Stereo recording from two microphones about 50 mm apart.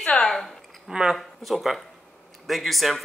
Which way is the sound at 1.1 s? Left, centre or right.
Centre.